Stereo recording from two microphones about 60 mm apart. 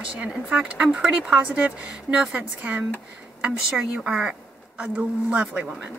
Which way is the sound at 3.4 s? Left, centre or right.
Centre.